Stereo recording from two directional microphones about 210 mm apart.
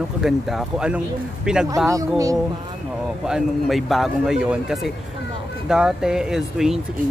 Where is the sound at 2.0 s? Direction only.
15° right (ahead or behind).